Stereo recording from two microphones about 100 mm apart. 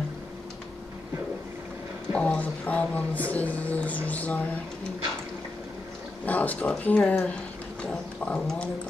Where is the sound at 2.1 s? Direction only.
10° left (ahead or behind).